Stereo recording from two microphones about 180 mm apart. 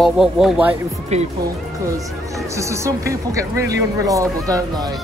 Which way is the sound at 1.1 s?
40° right (ahead or behind).